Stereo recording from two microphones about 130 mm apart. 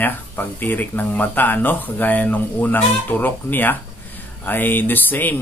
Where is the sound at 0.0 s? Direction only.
15° left (ahead or behind).